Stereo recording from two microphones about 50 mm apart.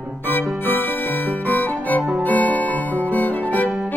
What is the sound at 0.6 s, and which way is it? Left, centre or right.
Music, left.